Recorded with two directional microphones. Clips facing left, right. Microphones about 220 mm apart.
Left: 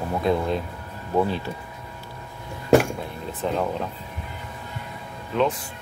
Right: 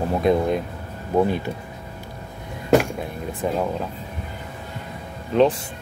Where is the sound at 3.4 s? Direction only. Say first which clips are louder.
Right 2 dB; 10° right (ahead or behind).